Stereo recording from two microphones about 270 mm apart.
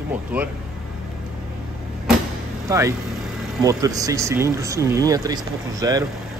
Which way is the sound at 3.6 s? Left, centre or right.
Centre.